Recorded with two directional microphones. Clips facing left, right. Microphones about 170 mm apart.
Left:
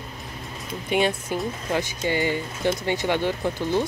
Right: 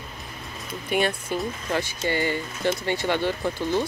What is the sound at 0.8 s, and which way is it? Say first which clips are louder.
Speech: left 2 dB; 20° left (ahead or behind).